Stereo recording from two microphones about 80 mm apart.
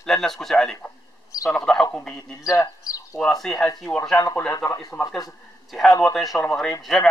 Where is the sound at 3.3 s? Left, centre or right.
Centre.